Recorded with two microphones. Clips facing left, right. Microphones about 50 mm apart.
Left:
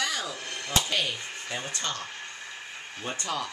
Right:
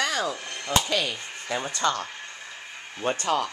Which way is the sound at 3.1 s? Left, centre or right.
Right.